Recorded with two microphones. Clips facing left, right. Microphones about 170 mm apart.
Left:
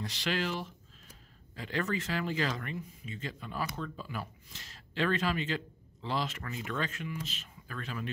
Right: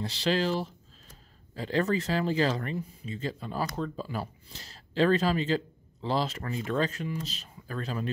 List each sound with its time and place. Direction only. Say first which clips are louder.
0.0 s speech: right 6 dB; 30° right (ahead or behind)